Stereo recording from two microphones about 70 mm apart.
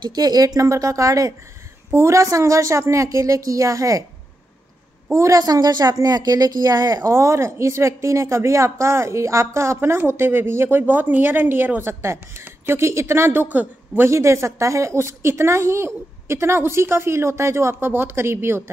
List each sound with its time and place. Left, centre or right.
0.0 s a woman's voice: right
5.1 s a woman's voice: right
5.4 s a woman's voice: right
14.0 s a woman's voice: right